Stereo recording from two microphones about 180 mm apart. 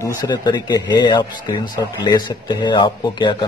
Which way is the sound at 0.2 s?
20° left (ahead or behind).